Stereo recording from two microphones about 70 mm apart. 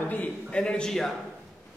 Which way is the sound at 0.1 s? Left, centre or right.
Left.